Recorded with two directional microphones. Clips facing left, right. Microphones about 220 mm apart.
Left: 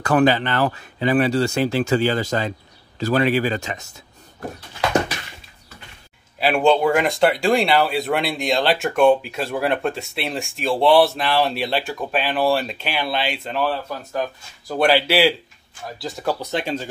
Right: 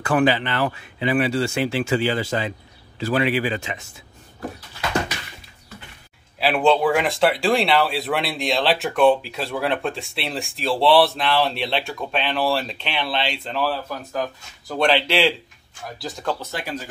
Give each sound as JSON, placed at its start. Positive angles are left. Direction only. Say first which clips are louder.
{"t": 0.0, "sound": "speech", "louder": "left 2 dB", "side_deg": 40}
{"t": 6.4, "sound": "speech", "louder": "left 1 dB", "side_deg": 0}
{"t": 16.3, "sound": "speech", "louder": "left 5 dB", "side_deg": 20}